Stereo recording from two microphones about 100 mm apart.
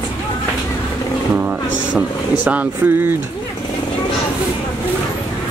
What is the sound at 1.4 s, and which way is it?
Speech, 15° right (ahead or behind).